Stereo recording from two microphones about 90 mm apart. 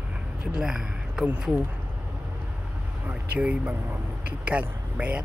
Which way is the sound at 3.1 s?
15° right (ahead or behind).